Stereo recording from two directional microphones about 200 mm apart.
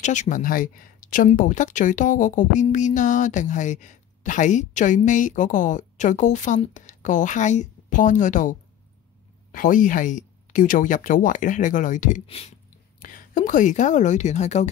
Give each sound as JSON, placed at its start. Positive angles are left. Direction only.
{"t": 0.0, "sound": "speech", "side_deg": 35}
{"t": 13.0, "sound": "a woman's voice", "side_deg": 40}